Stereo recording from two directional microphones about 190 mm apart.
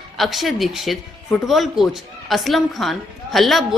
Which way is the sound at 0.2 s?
Centre (ahead or behind).